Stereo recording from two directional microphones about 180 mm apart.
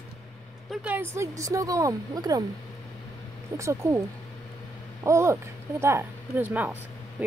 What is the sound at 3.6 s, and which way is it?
Speech, 15° right (ahead or behind).